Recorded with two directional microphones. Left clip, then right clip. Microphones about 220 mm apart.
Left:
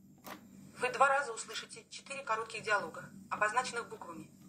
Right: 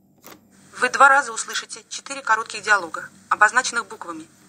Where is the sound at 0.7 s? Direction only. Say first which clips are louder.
Right 15 dB; 45° right (ahead or behind).